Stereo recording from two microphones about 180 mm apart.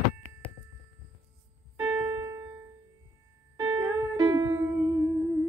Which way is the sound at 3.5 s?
20° right (ahead or behind).